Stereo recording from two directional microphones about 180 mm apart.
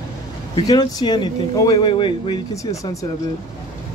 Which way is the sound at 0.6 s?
20° left (ahead or behind).